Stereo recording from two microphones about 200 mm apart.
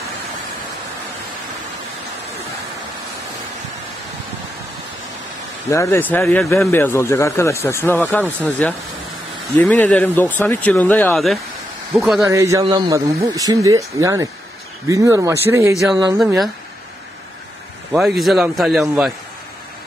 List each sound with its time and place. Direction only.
5.7 s a man's voice: 15° left (ahead or behind)
12.2 s a man's voice: 15° right (ahead or behind)
17.9 s a man's voice: centre (ahead or behind)